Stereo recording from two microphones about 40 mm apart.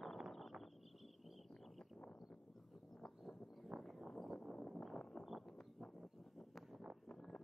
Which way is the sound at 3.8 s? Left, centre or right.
Centre.